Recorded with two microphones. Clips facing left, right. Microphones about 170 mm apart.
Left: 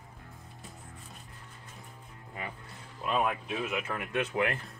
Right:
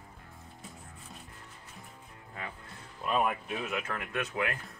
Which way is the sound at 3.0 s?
Centre (ahead or behind).